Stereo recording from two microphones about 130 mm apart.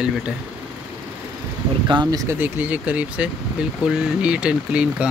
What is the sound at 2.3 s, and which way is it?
Speech, 15° right (ahead or behind).